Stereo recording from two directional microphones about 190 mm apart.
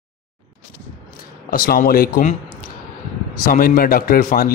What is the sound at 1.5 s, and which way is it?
Speech, 50° left (ahead or behind).